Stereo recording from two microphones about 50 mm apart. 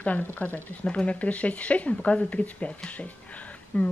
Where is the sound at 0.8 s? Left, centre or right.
Left.